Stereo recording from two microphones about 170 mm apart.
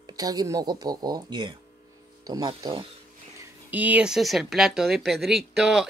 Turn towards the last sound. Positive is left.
turn(degrees=0)  # may be behind; listen again after turning